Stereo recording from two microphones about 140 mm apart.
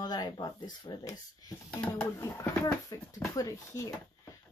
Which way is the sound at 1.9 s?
15° left (ahead or behind).